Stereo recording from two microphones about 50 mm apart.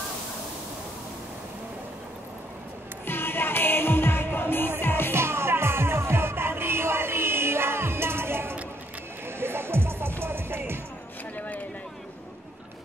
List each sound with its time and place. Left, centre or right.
3.1 s music: left
5.1 s music: right
11.3 s a sound: left